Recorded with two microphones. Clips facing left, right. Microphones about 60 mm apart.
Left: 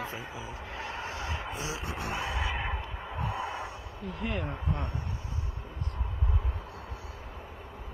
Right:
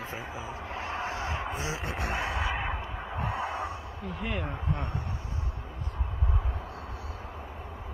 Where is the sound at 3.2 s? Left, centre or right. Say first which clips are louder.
Right 2 dB; right.